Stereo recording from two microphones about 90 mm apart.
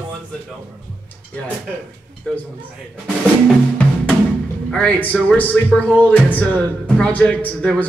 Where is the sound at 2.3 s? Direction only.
10° left (ahead or behind).